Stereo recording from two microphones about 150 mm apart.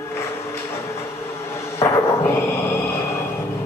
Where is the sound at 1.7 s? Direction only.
20° left (ahead or behind).